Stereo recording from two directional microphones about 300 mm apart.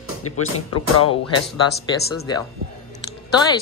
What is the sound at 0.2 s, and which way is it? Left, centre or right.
Speech, left.